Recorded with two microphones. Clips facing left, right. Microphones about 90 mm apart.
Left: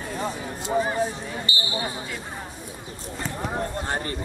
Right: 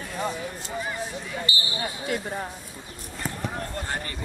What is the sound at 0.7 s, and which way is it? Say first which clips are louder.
Speech: left 9 dB; 35° left (ahead or behind).